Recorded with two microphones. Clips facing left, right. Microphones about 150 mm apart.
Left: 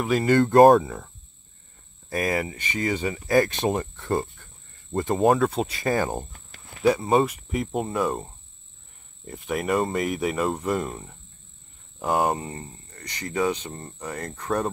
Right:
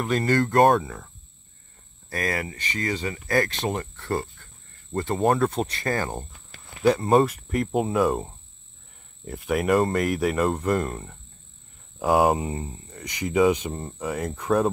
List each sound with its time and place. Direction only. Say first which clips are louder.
0.0 s speech: left 2 dB; 10° left (ahead or behind)
0.4 s speech: left 5 dB; 25° left (ahead or behind)
2.0 s speech: left 3 dB; 15° left (ahead or behind)
5.1 s speech: left 2 dB; centre (ahead or behind)
6.8 s speech: right 1 dB; centre (ahead or behind)